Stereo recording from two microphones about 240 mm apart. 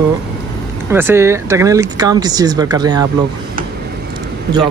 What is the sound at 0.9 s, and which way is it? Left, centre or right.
Speech, centre.